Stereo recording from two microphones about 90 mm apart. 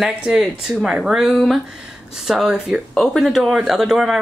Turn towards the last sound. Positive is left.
turn(degrees=-5)  # may be behind; listen again after turning